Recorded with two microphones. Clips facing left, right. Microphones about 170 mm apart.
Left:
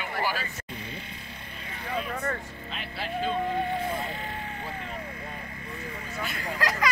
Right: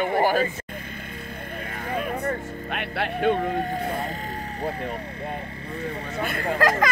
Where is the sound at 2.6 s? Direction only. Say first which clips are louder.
Right 7 dB; 65° right (ahead or behind).